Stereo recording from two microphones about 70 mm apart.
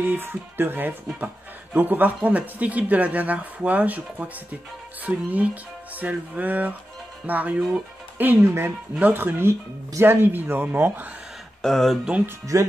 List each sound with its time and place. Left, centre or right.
0.0 s speech: right
11.6 s speech: centre
12.5 s speech: right